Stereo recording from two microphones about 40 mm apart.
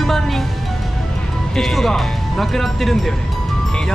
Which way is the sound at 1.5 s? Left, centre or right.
Centre.